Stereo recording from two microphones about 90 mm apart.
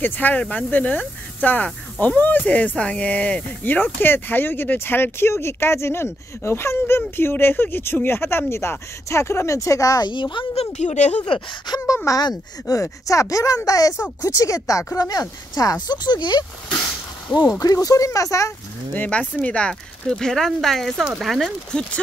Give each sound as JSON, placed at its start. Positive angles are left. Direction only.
{"t": 0.0, "sound": "speech", "side_deg": 20}
{"t": 10.1, "sound": "speech", "side_deg": 65}
{"t": 11.2, "sound": "speech", "side_deg": 60}
{"t": 11.8, "sound": "speech", "side_deg": 35}
{"t": 17.6, "sound": "speech", "side_deg": 40}
{"t": 18.9, "sound": "speech", "side_deg": 15}